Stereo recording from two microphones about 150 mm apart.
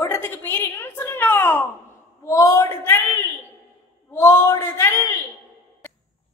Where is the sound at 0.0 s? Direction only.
15° left (ahead or behind).